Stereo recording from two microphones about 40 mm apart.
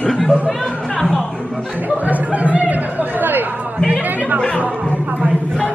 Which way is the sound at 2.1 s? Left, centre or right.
Right.